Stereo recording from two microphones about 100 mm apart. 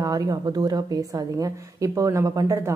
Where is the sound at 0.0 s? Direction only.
35° right (ahead or behind).